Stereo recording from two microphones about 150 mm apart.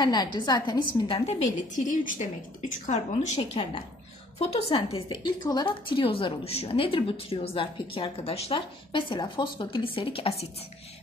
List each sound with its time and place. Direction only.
0.0 s a woman's voice: 30° left (ahead or behind); by 3.3 s 50° left (ahead or behind)
3.3 s a woman's voice: 35° left (ahead or behind)